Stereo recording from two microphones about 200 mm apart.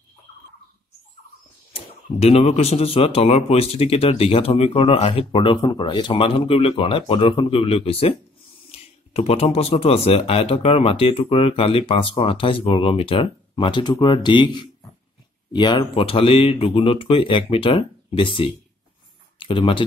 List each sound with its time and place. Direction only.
1.7 s speech: 30° left (ahead or behind)